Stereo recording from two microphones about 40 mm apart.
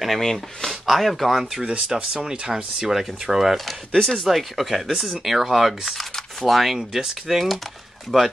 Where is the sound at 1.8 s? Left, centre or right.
Centre.